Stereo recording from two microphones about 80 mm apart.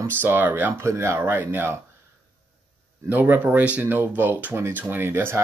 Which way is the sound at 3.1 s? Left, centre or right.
Right.